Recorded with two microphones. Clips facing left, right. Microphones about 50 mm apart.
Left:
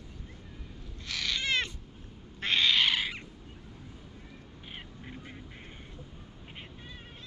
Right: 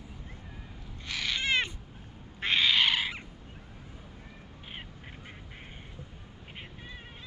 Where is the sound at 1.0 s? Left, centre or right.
Centre.